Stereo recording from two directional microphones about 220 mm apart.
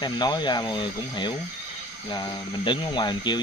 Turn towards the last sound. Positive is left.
turn(degrees=20)  # may be behind; listen again after turning